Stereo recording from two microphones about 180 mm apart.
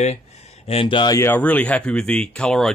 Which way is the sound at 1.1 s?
10° left (ahead or behind).